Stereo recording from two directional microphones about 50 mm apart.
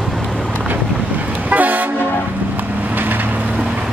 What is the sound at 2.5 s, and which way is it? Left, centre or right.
Vehicle, right.